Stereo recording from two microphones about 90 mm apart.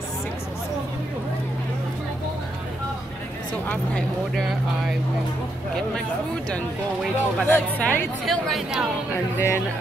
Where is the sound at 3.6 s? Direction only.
20° left (ahead or behind).